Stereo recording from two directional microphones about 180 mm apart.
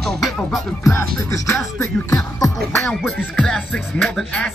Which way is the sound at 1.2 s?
15° left (ahead or behind).